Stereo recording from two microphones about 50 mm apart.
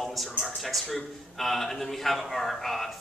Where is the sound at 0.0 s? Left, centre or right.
Centre.